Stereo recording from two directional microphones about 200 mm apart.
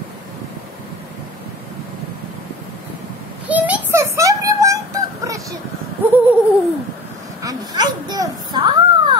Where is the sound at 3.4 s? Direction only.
5° right (ahead or behind).